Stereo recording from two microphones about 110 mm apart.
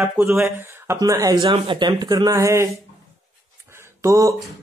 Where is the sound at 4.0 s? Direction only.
30° right (ahead or behind).